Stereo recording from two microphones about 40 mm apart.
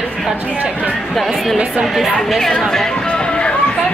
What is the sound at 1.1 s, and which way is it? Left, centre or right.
Speech, centre.